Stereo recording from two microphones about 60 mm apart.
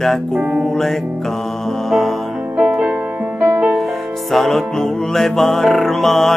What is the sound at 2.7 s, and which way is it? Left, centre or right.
Music, centre.